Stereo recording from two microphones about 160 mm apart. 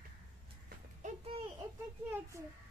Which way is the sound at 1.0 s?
50° right (ahead or behind).